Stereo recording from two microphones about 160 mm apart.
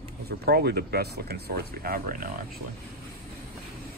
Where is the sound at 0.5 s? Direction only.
85° right; by 2.2 s 65° right (ahead or behind).